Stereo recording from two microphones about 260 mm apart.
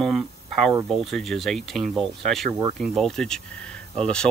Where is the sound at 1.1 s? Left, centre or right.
Centre.